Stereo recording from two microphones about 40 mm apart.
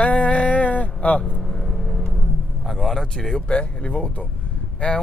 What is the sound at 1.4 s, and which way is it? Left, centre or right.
Vehicle, centre.